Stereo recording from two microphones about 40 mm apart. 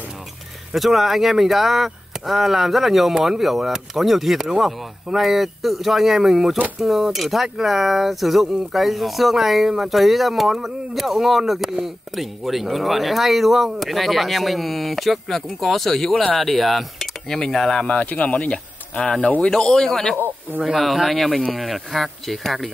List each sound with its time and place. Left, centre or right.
0.7 s speech: centre
17.8 s speech: left
19.4 s speech: centre
20.6 s speech: centre